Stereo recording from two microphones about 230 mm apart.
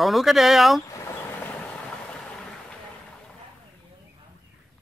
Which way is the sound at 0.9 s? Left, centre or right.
Centre.